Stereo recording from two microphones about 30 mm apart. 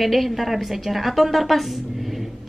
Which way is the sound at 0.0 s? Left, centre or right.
Centre.